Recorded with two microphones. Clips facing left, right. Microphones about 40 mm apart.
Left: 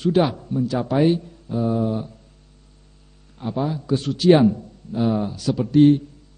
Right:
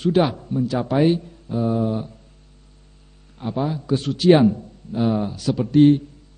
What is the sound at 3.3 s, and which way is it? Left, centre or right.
Speech, right.